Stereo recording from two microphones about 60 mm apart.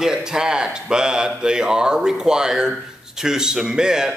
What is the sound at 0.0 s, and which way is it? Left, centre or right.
A man's voice, centre.